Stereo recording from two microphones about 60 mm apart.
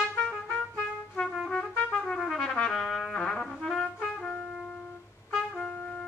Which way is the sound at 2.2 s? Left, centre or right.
Centre.